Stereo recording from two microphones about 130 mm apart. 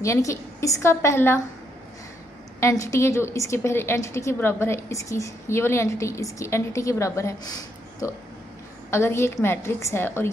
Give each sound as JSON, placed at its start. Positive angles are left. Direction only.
{"t": 0.0, "sound": "a woman's voice", "side_deg": 25}
{"t": 2.6, "sound": "a woman's voice", "side_deg": 25}
{"t": 8.9, "sound": "a woman's voice", "side_deg": 20}